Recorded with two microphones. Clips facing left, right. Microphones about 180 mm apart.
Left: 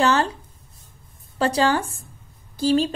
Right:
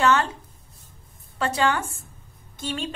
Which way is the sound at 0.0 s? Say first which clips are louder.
Left 1 dB; 30° left (ahead or behind).